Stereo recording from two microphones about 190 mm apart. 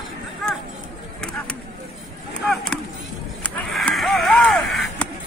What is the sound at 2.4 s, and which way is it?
Chop, 5° left (ahead or behind).